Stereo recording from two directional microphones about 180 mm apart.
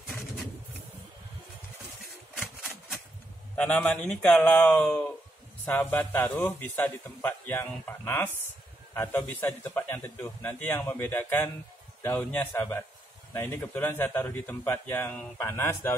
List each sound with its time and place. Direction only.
3.5 s a man's voice: 10° left (ahead or behind)